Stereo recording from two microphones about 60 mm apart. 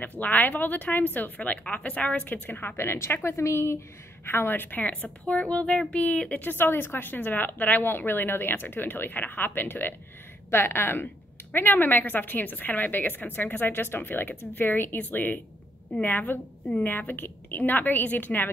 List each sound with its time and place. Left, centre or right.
0.2 s a woman's voice: left
4.3 s a woman's voice: left
6.5 s a woman's voice: left